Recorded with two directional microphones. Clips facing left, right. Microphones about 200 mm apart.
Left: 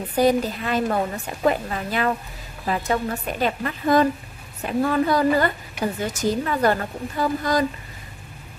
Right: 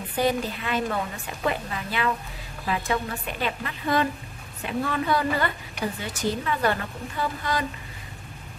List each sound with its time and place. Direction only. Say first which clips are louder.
0.1 s speech: left 6 dB; 40° left (ahead or behind)